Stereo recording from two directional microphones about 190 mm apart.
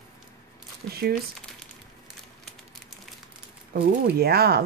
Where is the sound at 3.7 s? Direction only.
55° right (ahead or behind).